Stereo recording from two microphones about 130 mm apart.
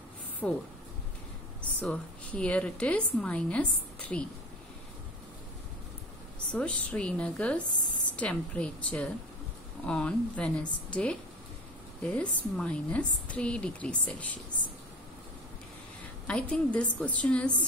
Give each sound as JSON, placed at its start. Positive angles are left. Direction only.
{"t": 0.4, "sound": "a woman's voice", "side_deg": 10}
{"t": 1.6, "sound": "a woman's voice", "side_deg": 10}
{"t": 6.5, "sound": "a woman's voice", "side_deg": 10}
{"t": 16.3, "sound": "a woman's voice", "side_deg": 10}